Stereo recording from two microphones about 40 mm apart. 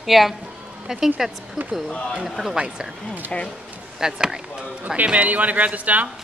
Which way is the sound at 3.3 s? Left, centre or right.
Left.